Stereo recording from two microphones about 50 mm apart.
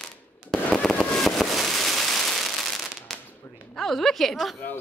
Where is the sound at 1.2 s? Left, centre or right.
Centre.